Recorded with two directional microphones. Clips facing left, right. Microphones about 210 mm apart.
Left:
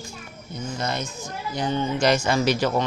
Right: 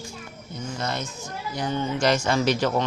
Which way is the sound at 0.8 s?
15° left (ahead or behind).